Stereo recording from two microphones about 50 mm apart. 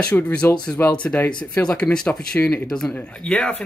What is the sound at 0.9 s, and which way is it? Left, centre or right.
A man's voice, left.